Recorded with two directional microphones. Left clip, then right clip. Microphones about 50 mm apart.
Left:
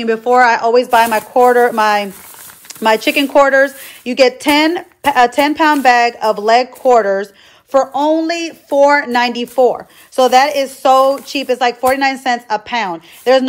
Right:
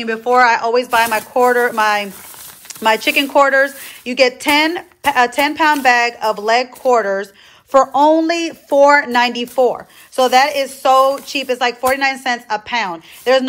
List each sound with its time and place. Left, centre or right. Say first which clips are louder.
0.2 s a woman's voice: left 1 dB; left
3.6 s a woman's voice: left 3 dB; left
6.8 s speech: left 3 dB; left
7.7 s a woman's voice: right 1 dB; centre
8.0 s a woman's voice: right 2 dB; right
9.1 s a woman's voice: even; centre
9.4 s a woman's voice: left 3 dB; left